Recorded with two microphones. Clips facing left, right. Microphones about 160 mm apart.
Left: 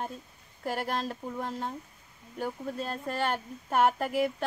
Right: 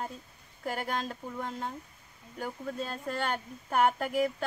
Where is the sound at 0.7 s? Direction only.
Centre (ahead or behind).